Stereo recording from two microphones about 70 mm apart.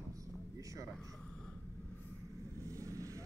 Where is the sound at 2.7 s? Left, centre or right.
Right.